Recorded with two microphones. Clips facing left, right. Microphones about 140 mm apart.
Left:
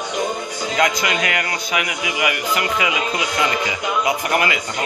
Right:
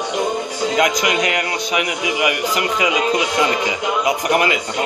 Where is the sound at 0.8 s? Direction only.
15° right (ahead or behind).